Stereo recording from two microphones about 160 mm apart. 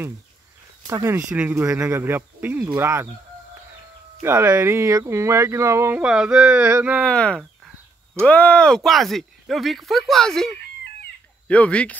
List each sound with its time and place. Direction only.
0.8 s speech: 20° right (ahead or behind)
4.2 s speech: 15° right (ahead or behind)
7.1 s speech: 5° left (ahead or behind)